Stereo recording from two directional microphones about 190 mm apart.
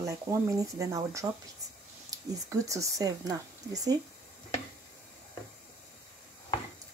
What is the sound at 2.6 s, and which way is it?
Speech, 15° right (ahead or behind).